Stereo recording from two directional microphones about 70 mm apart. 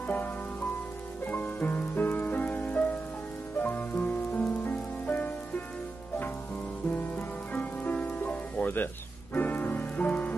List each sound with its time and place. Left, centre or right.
0.0 s rain on surface: left
1.2 s music: left
6.9 s music: left